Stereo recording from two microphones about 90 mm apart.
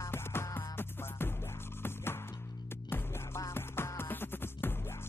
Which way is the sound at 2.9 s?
25° left (ahead or behind).